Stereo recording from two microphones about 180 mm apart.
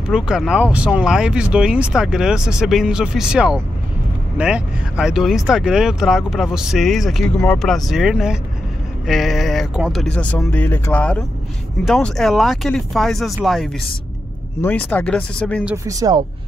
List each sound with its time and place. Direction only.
0.1 s speech: 5° right (ahead or behind)
14.6 s speech: 10° left (ahead or behind)
15.6 s speech: 15° right (ahead or behind)